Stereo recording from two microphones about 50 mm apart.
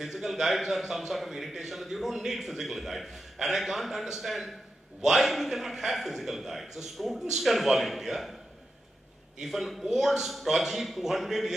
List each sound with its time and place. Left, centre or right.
0.0 s a man's voice: centre
9.4 s a man's voice: centre